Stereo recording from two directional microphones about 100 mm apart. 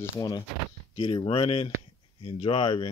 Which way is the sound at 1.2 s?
65° left (ahead or behind).